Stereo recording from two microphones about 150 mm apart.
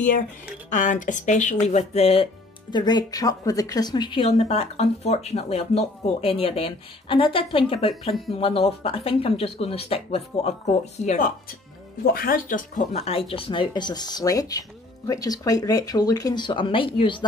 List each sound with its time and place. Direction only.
0.7 s speech: 55° left (ahead or behind)
2.7 s speech: 30° left (ahead or behind); by 11.1 s 45° left (ahead or behind)
12.1 s speech: 85° left; by 13.0 s 60° left (ahead or behind)
13.0 s speech: 40° left (ahead or behind)